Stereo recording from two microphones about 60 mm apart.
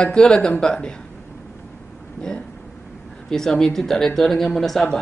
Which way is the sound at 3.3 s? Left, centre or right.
Centre.